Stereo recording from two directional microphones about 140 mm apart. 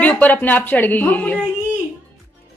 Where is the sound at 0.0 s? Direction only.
10° left (ahead or behind).